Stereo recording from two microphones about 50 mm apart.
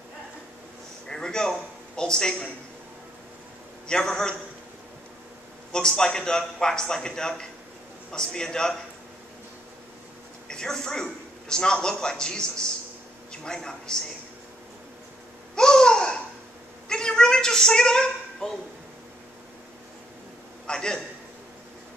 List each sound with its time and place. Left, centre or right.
1.0 s a sound: centre
3.8 s a man's voice: centre
5.7 s a man's voice: centre
10.5 s a man's voice: centre
15.5 s babbling: centre
16.9 s a sound: centre
20.6 s a man's voice: centre